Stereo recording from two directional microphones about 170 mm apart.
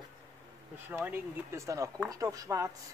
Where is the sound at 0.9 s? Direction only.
10° right (ahead or behind).